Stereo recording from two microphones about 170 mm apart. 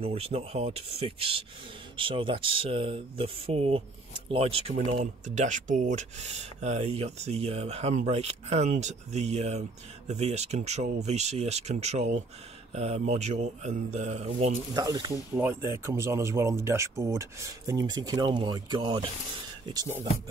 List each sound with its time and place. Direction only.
0.0 s speech: 35° right (ahead or behind)
5.0 s speech: 45° right (ahead or behind)
14.8 s speech: 25° right (ahead or behind)
15.3 s speech: 15° right (ahead or behind)